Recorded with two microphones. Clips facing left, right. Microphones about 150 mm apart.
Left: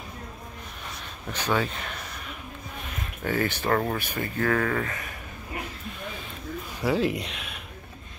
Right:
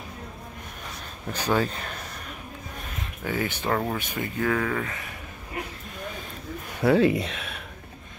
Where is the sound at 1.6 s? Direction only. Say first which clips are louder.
Right 2 dB; 40° right (ahead or behind).